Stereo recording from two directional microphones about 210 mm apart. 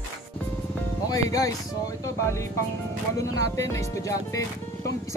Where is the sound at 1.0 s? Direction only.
15° left (ahead or behind).